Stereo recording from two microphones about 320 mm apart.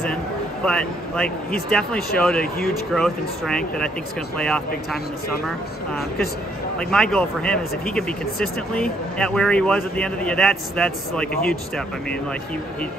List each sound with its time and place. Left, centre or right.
0.7 s speech: centre
6.8 s speech: centre